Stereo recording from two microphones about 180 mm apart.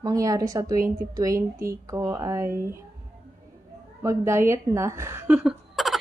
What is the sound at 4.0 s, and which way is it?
Speech, 15° right (ahead or behind).